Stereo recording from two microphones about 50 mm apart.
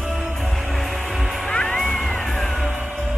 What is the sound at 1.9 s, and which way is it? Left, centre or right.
Music, centre.